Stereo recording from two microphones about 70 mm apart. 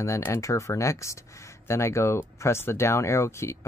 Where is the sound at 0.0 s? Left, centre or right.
Left.